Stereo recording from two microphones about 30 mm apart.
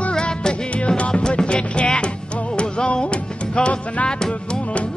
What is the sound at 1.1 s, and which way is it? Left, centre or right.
Music, left.